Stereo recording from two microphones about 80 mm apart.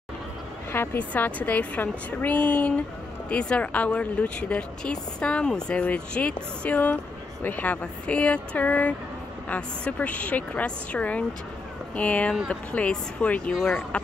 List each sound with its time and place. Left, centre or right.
0.7 s a woman's voice: left
13.5 s speech: centre